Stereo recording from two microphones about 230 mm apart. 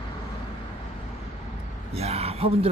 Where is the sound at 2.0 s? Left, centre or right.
Right.